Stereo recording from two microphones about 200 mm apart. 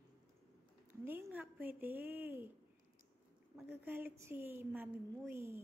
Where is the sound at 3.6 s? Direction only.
10° right (ahead or behind).